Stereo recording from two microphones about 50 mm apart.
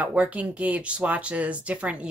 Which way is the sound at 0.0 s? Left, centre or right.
Right.